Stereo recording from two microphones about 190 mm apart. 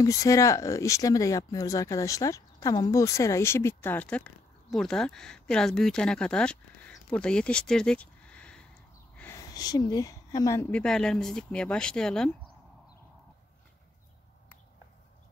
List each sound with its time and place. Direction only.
0.0 s speech: 15° left (ahead or behind)